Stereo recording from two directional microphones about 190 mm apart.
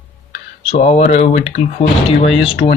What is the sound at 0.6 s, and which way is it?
Speech, 35° left (ahead or behind).